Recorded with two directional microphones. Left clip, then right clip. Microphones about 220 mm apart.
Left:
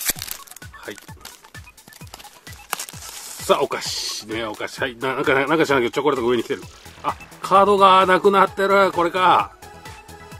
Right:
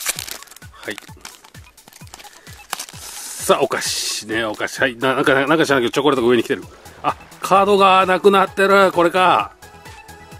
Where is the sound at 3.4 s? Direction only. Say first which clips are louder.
Right 3 dB; 45° right (ahead or behind).